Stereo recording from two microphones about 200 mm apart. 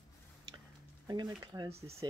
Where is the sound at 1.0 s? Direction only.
20° right (ahead or behind).